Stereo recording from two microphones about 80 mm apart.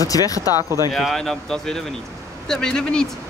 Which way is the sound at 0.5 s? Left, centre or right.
Right.